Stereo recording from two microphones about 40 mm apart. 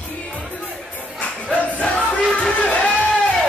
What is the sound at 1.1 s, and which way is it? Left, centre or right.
Music, left.